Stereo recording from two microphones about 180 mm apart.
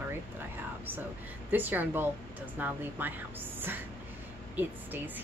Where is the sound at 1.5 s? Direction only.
10° right (ahead or behind).